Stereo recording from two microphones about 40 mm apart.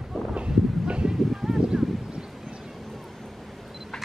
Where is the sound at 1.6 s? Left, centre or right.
Centre.